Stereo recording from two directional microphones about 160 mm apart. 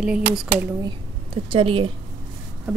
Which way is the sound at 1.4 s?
35° right (ahead or behind).